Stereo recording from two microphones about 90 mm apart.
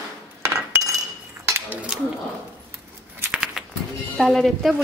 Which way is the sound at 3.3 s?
5° right (ahead or behind).